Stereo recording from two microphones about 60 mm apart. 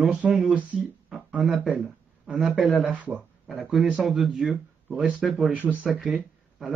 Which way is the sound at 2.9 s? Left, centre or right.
Right.